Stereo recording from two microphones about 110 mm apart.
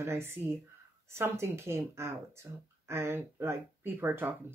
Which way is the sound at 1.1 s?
25° right (ahead or behind).